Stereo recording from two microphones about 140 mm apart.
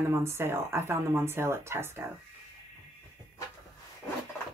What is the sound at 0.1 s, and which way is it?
Speech, 20° right (ahead or behind).